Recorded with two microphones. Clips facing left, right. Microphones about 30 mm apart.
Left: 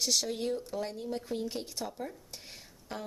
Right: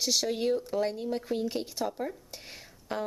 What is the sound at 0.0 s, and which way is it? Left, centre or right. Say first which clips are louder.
Speech: right 2 dB; centre.